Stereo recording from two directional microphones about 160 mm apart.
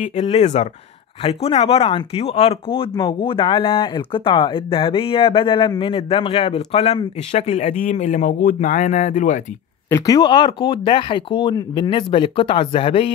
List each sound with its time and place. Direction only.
0.0 s speech: 40° left (ahead or behind)
9.8 s speech: 20° left (ahead or behind)